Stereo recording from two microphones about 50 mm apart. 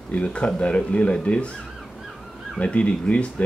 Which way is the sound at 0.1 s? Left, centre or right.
Left.